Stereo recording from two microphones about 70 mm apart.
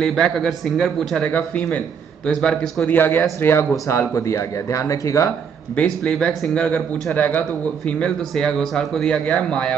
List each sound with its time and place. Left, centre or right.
0.0 s a man's voice: centre
1.2 s speech: centre
2.2 s speech: centre
2.9 s speech: left
6.0 s speech: centre
7.2 s speech: left
7.8 s speech: centre